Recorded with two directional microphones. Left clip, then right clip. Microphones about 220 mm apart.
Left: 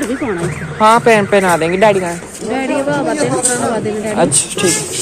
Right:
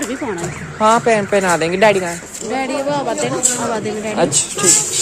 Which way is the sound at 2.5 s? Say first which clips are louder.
Left 2 dB; centre (ahead or behind).